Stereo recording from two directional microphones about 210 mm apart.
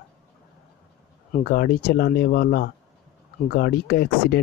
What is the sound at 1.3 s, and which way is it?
Speech, 45° left (ahead or behind).